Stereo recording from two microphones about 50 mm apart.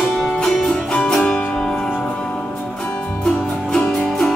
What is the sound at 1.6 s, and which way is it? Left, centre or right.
Music, centre.